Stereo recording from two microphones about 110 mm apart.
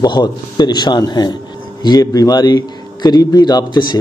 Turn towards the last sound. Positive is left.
turn(degrees=40)  # may be behind; listen again after turning